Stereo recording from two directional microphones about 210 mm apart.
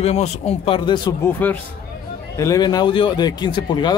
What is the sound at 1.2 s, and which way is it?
A man's voice, 10° left (ahead or behind).